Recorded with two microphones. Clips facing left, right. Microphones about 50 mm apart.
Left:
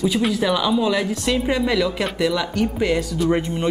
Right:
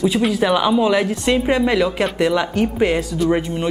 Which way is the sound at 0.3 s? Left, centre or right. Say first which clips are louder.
Right 3 dB; centre.